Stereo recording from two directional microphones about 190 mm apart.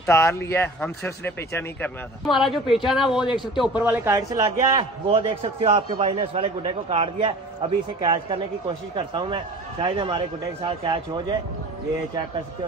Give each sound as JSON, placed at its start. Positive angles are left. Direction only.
{"t": 0.0, "sound": "speech", "side_deg": 15}
{"t": 2.2, "sound": "a man's voice", "side_deg": 0}